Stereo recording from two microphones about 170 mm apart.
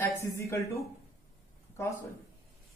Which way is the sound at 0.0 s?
15° left (ahead or behind).